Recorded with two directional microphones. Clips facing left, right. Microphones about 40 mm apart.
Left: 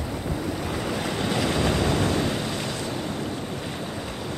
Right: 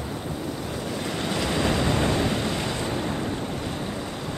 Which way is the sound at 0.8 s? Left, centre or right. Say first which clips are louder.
Left 1 dB; left.